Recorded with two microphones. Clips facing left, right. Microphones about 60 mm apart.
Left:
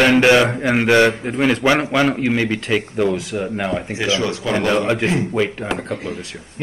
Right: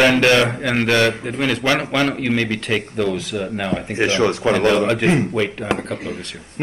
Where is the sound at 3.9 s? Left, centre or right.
Right.